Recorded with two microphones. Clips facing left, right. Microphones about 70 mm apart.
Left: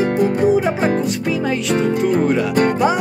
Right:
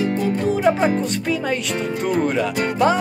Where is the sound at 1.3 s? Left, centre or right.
Centre.